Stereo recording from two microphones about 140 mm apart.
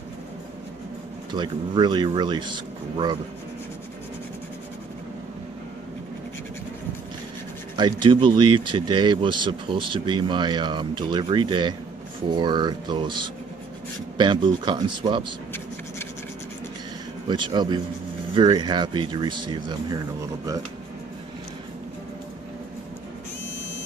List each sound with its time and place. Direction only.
1.3 s speech: 30° right (ahead or behind)
7.7 s speech: 35° right (ahead or behind)
17.3 s speech: 30° right (ahead or behind)